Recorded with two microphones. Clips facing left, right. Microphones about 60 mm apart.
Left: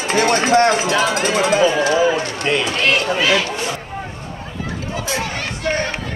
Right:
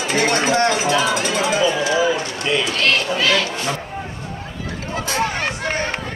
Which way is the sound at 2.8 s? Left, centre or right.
Centre.